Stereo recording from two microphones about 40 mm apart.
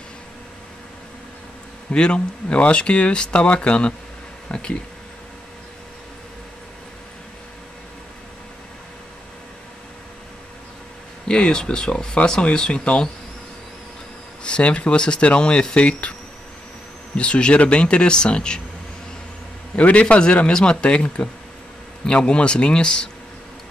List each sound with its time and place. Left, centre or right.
2.0 s speech: left
11.2 s speech: left
14.4 s speech: left
17.2 s speech: left
19.7 s speech: left